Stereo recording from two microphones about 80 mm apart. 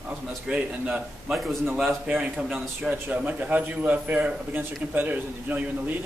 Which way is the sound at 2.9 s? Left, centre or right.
Right.